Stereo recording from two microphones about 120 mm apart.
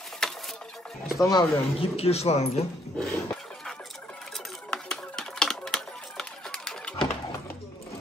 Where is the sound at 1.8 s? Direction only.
55° left (ahead or behind).